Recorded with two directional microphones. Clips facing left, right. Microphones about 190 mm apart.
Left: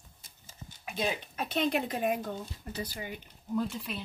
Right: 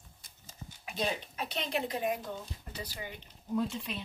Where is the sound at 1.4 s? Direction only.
50° left (ahead or behind).